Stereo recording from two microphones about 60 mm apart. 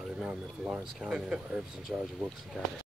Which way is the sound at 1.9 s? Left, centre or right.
Right.